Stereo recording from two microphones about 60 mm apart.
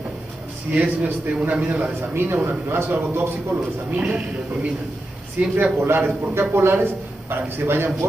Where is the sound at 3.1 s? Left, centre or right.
Right.